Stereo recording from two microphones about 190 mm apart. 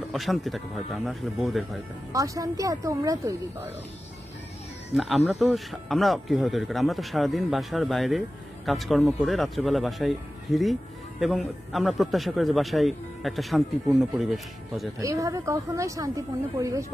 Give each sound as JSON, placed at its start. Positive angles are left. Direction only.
{"t": 0.1, "sound": "speech", "side_deg": 0}
{"t": 2.1, "sound": "speech", "side_deg": -15}
{"t": 4.9, "sound": "speech", "side_deg": 0}
{"t": 15.0, "sound": "speech", "side_deg": -15}